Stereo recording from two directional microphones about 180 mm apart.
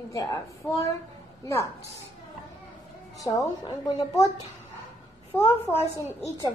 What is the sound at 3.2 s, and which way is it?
A woman's voice, 20° left (ahead or behind).